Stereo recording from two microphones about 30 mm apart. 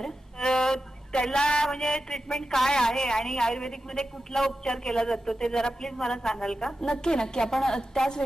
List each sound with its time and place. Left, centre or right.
0.0 s music: left
1.3 s a sound: left
1.7 s a man's voice: centre